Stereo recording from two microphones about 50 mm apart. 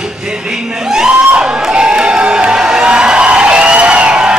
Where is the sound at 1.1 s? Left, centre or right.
Right.